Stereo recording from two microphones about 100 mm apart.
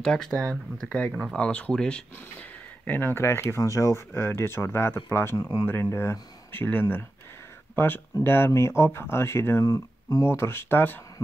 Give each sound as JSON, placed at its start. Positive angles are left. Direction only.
{"t": 0.0, "sound": "speech", "side_deg": 5}
{"t": 2.8, "sound": "speech", "side_deg": 20}